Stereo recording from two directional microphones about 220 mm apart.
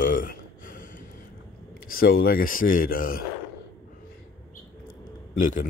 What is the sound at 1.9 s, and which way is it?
Speech, 40° left (ahead or behind).